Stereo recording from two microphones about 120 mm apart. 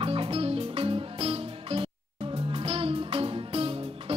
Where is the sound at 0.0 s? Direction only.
50° right (ahead or behind).